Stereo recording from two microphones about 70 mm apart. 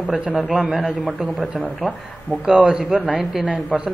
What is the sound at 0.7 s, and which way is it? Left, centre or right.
A man's voice, centre.